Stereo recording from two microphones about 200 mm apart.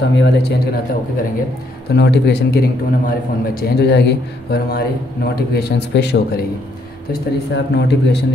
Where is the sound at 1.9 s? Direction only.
55° left (ahead or behind).